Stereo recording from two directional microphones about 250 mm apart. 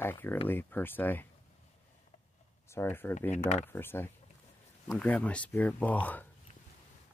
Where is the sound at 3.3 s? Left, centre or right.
Left.